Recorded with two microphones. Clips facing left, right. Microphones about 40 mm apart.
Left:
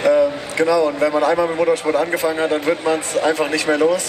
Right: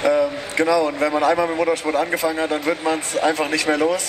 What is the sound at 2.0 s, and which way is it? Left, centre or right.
Speech, left.